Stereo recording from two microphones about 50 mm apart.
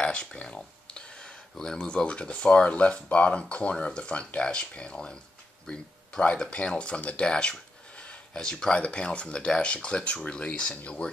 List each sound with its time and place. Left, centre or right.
0.0 s a sound: left
1.8 s speech: left
6.2 s speech: left